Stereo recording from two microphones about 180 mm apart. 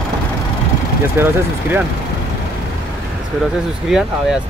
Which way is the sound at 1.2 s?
10° right (ahead or behind).